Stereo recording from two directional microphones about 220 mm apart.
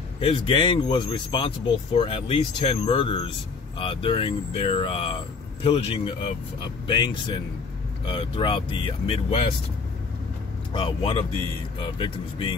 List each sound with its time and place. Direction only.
0.2 s a man's voice: 25° left (ahead or behind)
10.7 s a man's voice: 25° left (ahead or behind)